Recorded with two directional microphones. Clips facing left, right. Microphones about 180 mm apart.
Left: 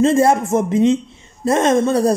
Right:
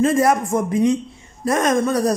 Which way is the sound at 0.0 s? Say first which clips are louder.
Left 3 dB; 25° left (ahead or behind).